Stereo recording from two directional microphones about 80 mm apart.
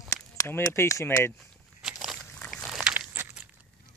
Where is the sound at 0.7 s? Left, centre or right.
Left.